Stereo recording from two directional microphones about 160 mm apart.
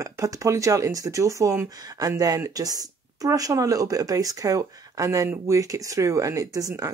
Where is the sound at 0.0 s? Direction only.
20° right (ahead or behind).